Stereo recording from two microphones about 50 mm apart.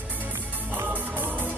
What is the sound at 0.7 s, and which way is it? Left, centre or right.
Music, right.